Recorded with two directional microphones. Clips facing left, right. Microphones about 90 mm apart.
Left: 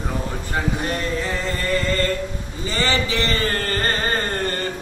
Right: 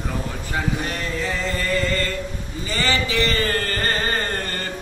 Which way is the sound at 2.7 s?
25° left (ahead or behind).